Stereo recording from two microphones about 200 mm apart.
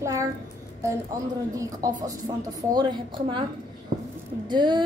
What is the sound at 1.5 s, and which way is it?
A woman's voice, 15° right (ahead or behind).